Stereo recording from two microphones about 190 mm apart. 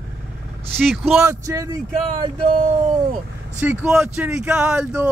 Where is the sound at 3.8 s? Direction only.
5° right (ahead or behind).